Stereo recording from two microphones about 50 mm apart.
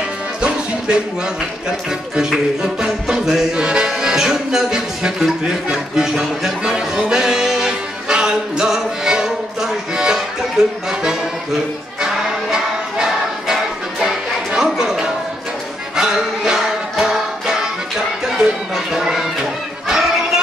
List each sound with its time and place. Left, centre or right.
0.4 s music: centre
2.1 s music: centre
3.6 s speech: centre
7.0 s music: centre
12.0 s music: centre
19.9 s a sound: centre